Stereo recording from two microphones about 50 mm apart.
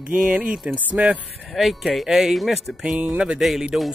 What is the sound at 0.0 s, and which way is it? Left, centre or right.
Speech, right.